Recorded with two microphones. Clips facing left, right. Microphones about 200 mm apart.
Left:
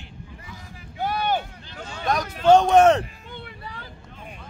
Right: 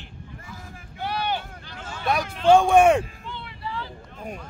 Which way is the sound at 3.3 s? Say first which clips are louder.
Right 3 dB; 50° left (ahead or behind).